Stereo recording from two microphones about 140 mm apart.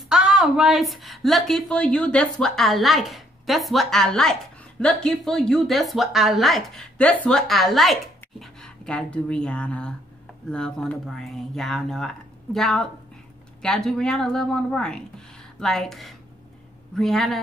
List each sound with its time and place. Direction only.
0.1 s speech: 5° right (ahead or behind)